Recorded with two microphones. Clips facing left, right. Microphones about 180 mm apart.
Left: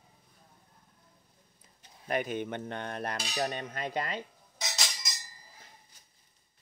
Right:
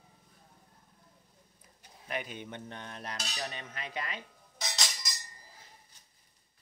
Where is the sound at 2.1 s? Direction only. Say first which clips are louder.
Left 7 dB; 50° left (ahead or behind).